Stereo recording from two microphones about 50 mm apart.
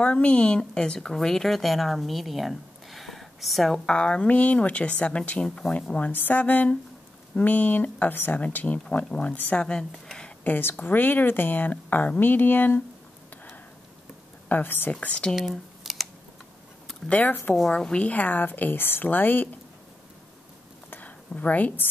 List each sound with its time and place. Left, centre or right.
0.0 s a woman's voice: left; by 3.8 s centre
3.8 s a woman's voice: left
6.1 s a woman's voice: left
9.7 s a sound: centre
10.4 s speech: left
14.5 s speech: left
14.9 s a woman's voice: left
15.3 s squish: centre
17.1 s speech: left
17.6 s speech: centre
18.0 s speech: left
21.4 s speech: left